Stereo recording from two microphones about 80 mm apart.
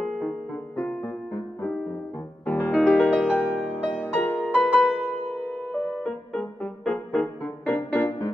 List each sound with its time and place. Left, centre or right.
0.0 s music: centre
2.7 s music: centre
3.3 s music: left
4.7 s music: centre
7.7 s music: centre